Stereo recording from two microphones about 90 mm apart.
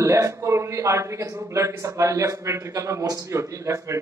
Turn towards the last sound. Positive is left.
turn(degrees=-35)  # may be behind; listen again after turning